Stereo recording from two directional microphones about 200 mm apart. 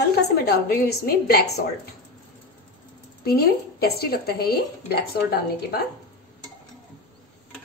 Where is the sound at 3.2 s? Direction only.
50° left (ahead or behind).